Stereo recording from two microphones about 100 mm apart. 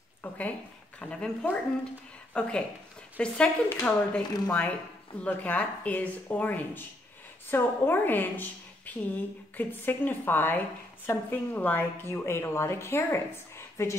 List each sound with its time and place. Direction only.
0.2 s a woman's voice: 15° left (ahead or behind)